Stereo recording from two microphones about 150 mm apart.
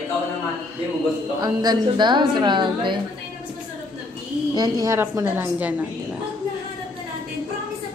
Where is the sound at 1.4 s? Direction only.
25° right (ahead or behind).